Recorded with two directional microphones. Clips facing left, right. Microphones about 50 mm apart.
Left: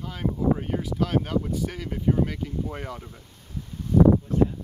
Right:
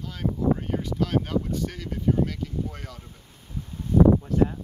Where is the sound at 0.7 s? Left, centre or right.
Centre; by 2.9 s left.